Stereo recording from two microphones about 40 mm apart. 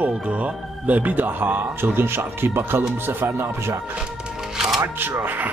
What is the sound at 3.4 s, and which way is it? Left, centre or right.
Speech, right.